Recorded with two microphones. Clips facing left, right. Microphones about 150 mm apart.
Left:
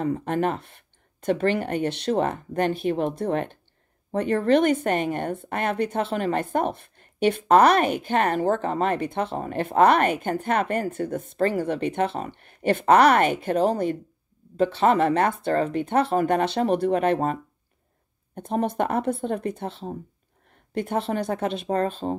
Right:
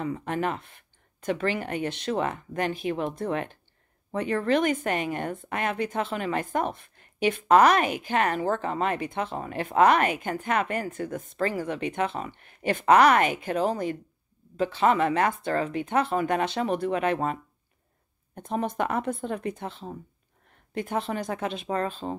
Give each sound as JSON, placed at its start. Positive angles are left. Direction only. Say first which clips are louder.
{"t": 0.0, "sound": "a woman's voice", "louder": "left 4 dB", "side_deg": 45}
{"t": 18.9, "sound": "speech", "louder": "left 4 dB", "side_deg": 35}